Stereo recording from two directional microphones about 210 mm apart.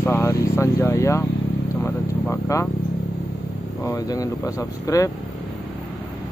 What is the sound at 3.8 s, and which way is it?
Speech, 15° left (ahead or behind).